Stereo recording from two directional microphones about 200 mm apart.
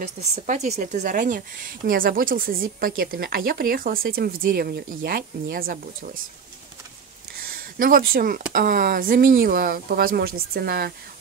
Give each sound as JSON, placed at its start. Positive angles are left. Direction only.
{"t": 0.0, "sound": "a woman's voice", "side_deg": -35}
{"t": 7.4, "sound": "speech", "side_deg": -45}